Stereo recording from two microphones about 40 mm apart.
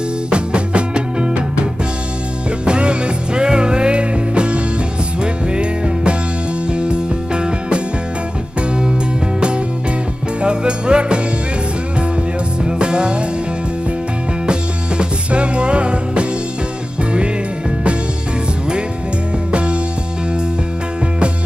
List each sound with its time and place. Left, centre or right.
0.3 s music: right
10.4 s music: right
12.6 s music: right
14.4 s music: right
19.5 s music: right